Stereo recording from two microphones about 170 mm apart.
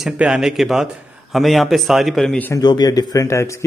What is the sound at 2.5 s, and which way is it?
Speech, 25° left (ahead or behind).